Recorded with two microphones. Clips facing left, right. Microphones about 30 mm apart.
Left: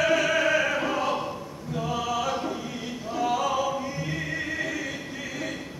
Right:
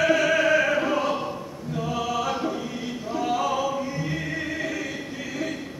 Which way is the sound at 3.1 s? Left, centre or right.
Centre.